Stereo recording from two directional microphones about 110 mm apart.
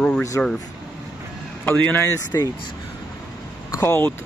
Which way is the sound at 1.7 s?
15° left (ahead or behind).